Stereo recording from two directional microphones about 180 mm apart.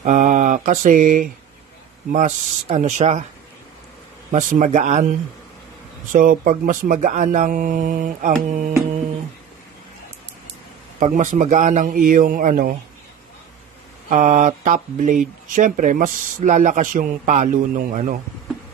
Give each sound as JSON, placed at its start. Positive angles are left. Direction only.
{"t": 0.0, "sound": "mantra", "side_deg": -45}
{"t": 2.1, "sound": "speech", "side_deg": -40}
{"t": 4.3, "sound": "speech", "side_deg": -45}
{"t": 6.1, "sound": "speech", "side_deg": -50}
{"t": 11.0, "sound": "speech", "side_deg": -45}
{"t": 14.0, "sound": "speech", "side_deg": -45}